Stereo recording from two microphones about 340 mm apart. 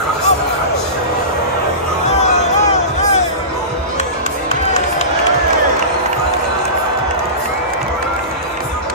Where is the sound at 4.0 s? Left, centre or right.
Centre.